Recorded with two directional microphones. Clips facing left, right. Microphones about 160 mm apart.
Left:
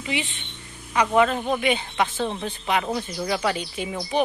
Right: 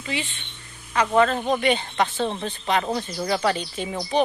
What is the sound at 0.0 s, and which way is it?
Speech, 20° left (ahead or behind).